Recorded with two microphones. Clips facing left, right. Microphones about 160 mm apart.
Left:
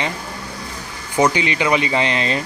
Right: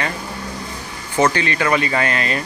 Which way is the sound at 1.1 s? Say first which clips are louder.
Even; 15° left (ahead or behind).